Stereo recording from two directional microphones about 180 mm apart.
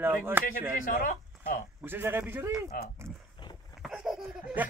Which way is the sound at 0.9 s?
45° left (ahead or behind).